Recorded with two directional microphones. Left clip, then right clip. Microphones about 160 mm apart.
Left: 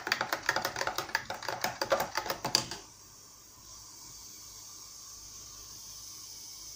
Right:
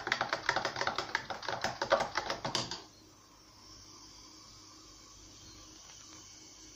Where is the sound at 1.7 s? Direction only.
25° left (ahead or behind).